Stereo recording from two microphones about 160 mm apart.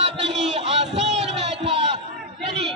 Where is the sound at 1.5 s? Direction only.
40° right (ahead or behind).